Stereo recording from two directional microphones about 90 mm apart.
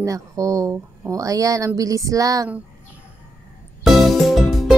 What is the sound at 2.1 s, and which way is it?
Speech, 40° right (ahead or behind).